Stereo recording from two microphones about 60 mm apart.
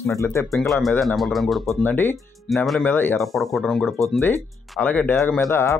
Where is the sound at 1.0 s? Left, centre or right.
Centre.